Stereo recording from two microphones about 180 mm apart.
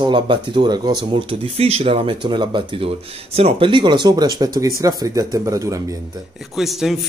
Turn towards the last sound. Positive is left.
turn(degrees=0)  # may be behind; listen again after turning